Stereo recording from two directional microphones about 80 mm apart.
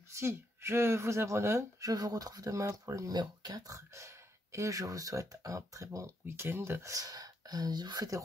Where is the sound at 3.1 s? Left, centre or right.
Right.